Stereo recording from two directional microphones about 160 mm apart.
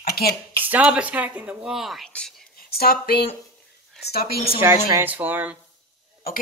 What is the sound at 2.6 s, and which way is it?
Speech, 70° left (ahead or behind).